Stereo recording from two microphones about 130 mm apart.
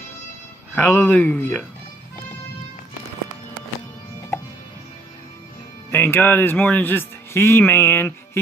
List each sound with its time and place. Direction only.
0.7 s a man's voice: 10° left (ahead or behind)
5.9 s a man's voice: 15° left (ahead or behind)